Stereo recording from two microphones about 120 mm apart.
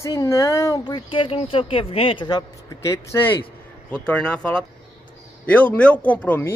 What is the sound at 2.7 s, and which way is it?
Speech, 25° left (ahead or behind).